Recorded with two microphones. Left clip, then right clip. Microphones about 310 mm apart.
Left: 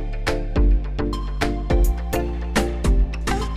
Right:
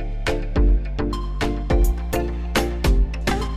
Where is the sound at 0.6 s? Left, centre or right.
Centre.